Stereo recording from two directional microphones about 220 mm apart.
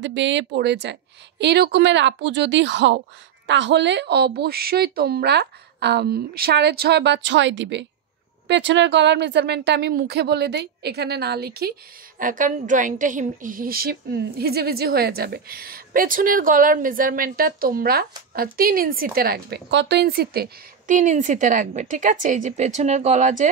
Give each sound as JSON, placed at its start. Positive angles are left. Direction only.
{"t": 0.0, "sound": "a woman's voice", "side_deg": -55}